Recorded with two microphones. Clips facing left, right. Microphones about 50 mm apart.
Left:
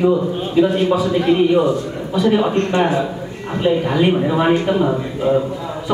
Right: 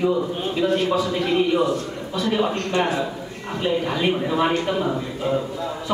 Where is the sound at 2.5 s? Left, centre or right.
Left.